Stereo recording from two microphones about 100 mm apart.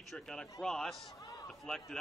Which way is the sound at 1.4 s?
5° left (ahead or behind).